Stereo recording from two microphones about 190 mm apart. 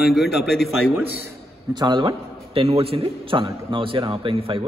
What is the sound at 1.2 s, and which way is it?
A man's voice, 20° right (ahead or behind).